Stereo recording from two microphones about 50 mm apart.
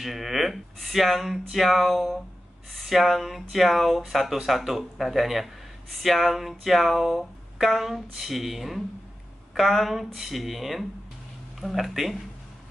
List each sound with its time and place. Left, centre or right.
0.0 s speech: centre